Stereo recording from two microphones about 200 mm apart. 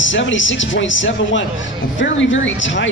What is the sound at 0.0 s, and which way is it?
A man's voice, 70° left (ahead or behind).